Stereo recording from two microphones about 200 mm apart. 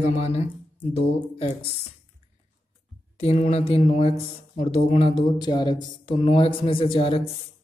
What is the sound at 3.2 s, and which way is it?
A man's voice, 30° left (ahead or behind).